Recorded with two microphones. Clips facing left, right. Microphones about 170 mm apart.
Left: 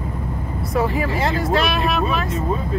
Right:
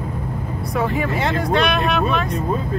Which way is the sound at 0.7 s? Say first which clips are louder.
Left 1 dB; centre (ahead or behind).